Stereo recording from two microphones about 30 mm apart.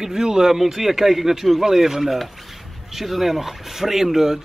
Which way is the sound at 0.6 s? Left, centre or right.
Centre.